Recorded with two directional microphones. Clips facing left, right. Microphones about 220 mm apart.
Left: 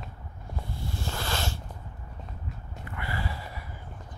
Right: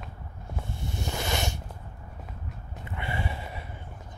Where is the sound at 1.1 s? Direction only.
20° right (ahead or behind).